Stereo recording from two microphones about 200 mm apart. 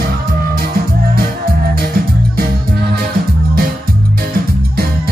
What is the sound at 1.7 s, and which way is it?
Music, 45° right (ahead or behind).